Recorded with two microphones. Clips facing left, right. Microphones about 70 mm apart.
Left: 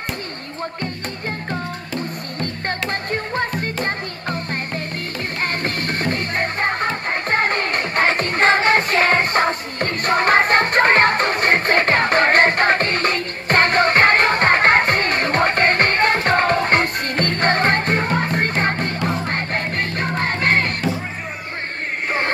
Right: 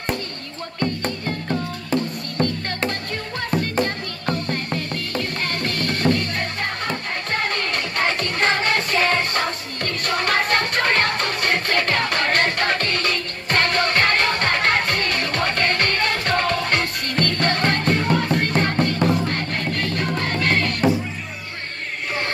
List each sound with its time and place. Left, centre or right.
3.8 s music: left